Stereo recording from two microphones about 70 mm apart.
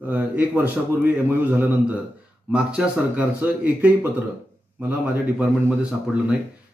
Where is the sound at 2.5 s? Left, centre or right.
Centre.